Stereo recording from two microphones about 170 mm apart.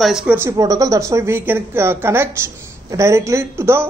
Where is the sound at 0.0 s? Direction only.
5° right (ahead or behind).